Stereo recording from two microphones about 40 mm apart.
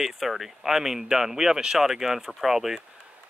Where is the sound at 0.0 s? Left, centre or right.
Centre.